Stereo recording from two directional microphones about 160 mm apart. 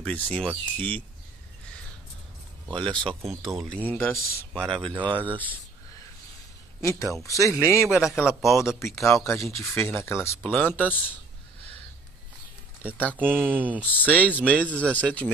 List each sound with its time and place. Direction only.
0.0 s speech: 10° left (ahead or behind)
2.7 s speech: 30° right (ahead or behind)
3.3 s speech: centre (ahead or behind)
4.8 s speech: 30° right (ahead or behind)
6.8 s a man's voice: 20° left (ahead or behind)
7.9 s speech: 5° right (ahead or behind)
9.3 s speech: 15° left (ahead or behind)
13.2 s speech: 10° right (ahead or behind)
13.9 s speech: 10° left (ahead or behind)